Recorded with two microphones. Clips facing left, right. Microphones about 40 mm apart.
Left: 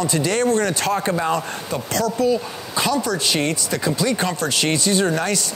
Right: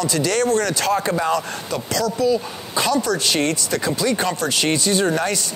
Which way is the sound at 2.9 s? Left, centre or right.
Left.